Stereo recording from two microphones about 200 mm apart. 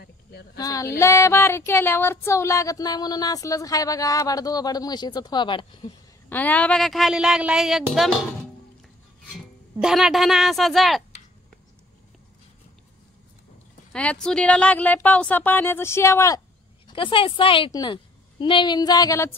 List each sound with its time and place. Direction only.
0.0 s a sound: 55° left (ahead or behind)
0.6 s child singing: 15° left (ahead or behind)
6.2 s speech: 10° left (ahead or behind)
9.8 s speech: centre (ahead or behind)
14.2 s child singing: 5° left (ahead or behind)
16.8 s a woman's voice: 25° left (ahead or behind)